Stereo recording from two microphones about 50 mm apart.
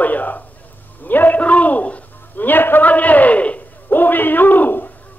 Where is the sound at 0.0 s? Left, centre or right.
Left.